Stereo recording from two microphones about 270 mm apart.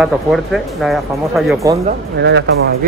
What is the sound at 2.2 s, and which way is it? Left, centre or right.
Speech, right.